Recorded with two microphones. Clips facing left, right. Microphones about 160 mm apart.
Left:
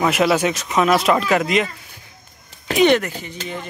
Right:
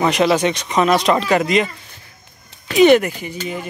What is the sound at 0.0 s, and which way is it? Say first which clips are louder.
Speech: right 2 dB; 5° left (ahead or behind).